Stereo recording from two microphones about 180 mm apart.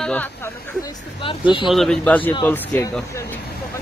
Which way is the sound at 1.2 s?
30° left (ahead or behind).